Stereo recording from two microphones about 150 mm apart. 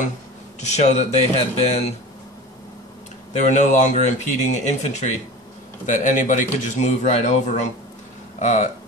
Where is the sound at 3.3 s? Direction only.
55° left (ahead or behind).